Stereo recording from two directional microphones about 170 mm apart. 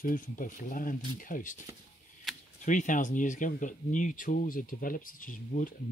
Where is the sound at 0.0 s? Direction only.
55° left (ahead or behind).